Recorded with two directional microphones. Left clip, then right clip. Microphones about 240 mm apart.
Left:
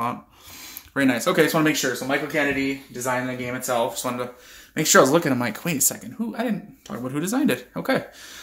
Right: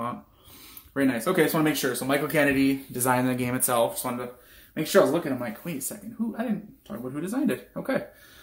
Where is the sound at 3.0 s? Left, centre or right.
Right.